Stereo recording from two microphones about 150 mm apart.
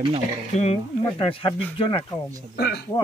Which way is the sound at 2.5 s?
90° left.